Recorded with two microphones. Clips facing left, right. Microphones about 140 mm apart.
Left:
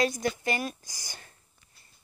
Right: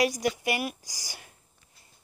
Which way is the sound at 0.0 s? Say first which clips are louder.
Right 1 dB; 15° right (ahead or behind).